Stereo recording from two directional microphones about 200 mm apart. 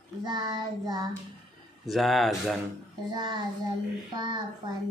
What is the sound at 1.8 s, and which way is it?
Speech, centre (ahead or behind).